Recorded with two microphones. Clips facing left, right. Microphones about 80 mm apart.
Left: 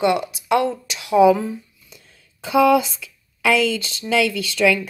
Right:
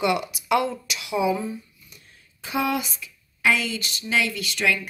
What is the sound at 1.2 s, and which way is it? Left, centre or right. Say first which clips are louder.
Speech: left 10 dB; left.